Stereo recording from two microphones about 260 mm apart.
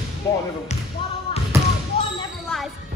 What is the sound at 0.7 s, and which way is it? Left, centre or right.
Speech, left.